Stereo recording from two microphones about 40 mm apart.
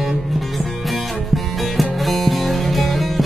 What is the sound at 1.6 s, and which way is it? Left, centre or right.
Music, centre.